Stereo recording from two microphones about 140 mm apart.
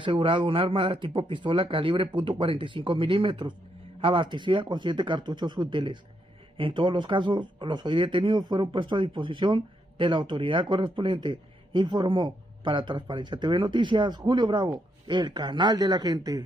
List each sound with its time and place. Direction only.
0.0 s speech: 35° right (ahead or behind)